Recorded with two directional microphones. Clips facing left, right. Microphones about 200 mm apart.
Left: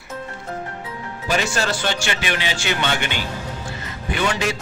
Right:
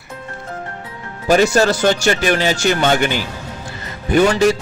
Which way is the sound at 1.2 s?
40° right (ahead or behind).